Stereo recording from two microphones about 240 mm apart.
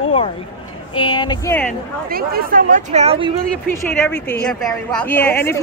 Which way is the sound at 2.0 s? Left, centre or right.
Right.